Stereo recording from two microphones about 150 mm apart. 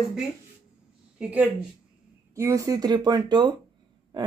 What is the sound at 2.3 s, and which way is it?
Speech, 20° right (ahead or behind).